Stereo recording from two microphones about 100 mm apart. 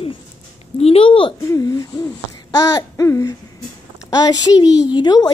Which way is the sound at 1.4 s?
35° left (ahead or behind).